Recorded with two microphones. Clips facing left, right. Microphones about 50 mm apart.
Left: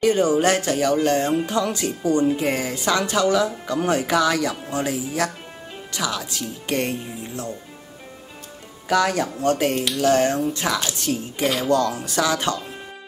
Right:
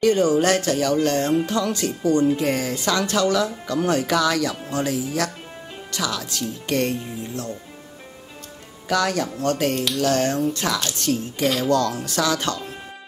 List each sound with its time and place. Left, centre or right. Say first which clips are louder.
0.0 s speech: even; centre
8.8 s speech: left 2 dB; centre
10.8 s speech: right 1 dB; centre
11.7 s speech: left 1 dB; centre